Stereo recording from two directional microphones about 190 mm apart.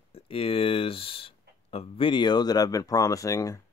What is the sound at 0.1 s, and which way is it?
Speech, 30° left (ahead or behind).